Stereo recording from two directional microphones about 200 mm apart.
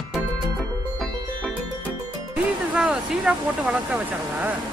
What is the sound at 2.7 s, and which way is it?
Speech, 5° right (ahead or behind).